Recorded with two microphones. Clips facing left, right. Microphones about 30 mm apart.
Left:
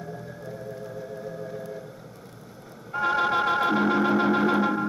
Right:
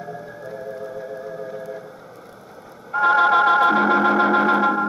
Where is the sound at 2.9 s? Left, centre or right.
Centre.